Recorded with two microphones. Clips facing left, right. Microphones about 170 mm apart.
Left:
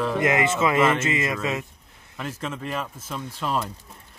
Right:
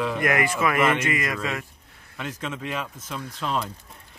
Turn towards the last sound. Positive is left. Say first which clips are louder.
# left 1 dB
turn(degrees=5)  # may be behind; listen again after turning